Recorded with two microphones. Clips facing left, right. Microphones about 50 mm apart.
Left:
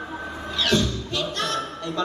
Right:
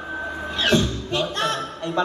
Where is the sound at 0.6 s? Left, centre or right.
Right.